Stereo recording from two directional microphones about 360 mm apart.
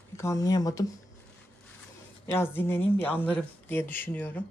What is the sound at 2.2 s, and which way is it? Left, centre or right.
Speech, centre.